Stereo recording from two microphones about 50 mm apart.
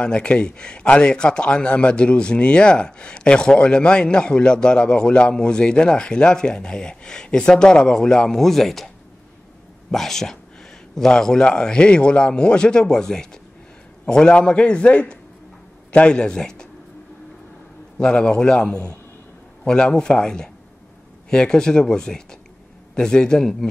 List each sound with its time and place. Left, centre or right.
0.0 s a man's voice: left
17.9 s a man's voice: centre